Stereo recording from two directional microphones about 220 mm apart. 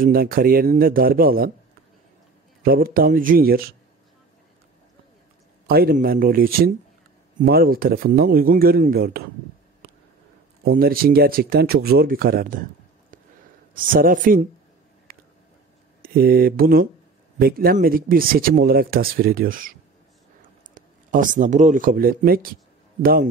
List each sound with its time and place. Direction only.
0.0 s speech: 40° right (ahead or behind)
2.6 s speech: 40° right (ahead or behind)
5.7 s speech: 45° right (ahead or behind)
10.6 s speech: 40° right (ahead or behind)
13.7 s speech: 40° right (ahead or behind)
15.1 s a sound: 40° right (ahead or behind)
16.0 s speech: 40° right (ahead or behind)
20.7 s speech: 35° right (ahead or behind)